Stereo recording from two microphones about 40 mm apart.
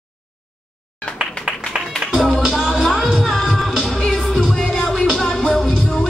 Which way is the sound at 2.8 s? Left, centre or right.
Centre.